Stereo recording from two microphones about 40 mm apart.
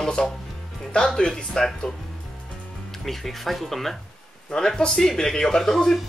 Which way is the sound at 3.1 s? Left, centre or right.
Centre.